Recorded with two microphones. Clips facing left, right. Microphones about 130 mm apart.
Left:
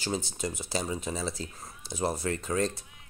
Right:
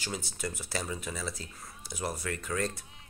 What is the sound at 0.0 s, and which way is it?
Speech, 25° left (ahead or behind).